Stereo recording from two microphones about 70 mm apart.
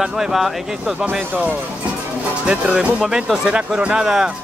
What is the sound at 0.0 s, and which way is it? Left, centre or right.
Speech, centre.